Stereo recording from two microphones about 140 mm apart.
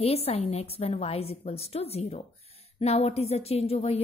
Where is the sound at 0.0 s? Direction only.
45° left (ahead or behind).